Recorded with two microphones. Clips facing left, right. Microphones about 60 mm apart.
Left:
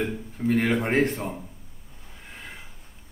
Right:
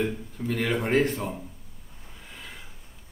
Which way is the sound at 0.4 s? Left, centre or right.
Left.